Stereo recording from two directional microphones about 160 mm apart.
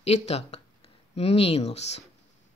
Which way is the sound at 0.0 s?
40° left (ahead or behind).